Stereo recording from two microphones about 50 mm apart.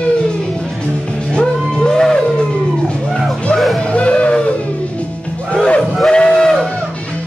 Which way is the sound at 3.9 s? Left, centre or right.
Left.